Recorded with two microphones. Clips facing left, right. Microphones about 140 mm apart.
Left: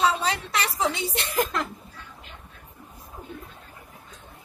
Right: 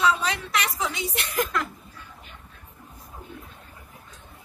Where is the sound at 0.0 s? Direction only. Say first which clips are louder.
Even; 30° left (ahead or behind).